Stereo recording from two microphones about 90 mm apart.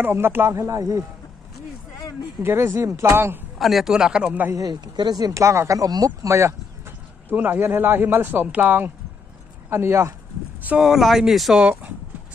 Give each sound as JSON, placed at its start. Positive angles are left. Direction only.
{"t": 0.0, "sound": "speech", "side_deg": -25}
{"t": 0.6, "sound": "speech", "side_deg": -40}
{"t": 2.4, "sound": "speech", "side_deg": -30}
{"t": 3.5, "sound": "speech", "side_deg": 0}
{"t": 4.6, "sound": "speech", "side_deg": -45}
{"t": 7.2, "sound": "speech", "side_deg": -20}
{"t": 10.8, "sound": "speech", "side_deg": -5}